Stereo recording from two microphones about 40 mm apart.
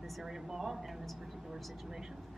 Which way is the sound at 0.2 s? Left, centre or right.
Centre.